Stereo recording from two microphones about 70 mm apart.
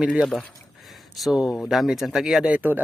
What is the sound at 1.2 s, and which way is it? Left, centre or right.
Speech, centre.